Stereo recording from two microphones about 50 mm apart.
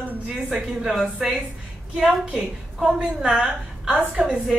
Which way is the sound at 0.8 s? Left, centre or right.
Centre.